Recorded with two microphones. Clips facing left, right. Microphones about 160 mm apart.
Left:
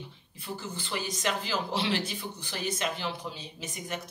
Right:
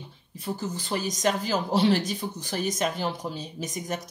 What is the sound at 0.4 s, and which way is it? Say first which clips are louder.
Speech: right 6 dB; 40° right (ahead or behind).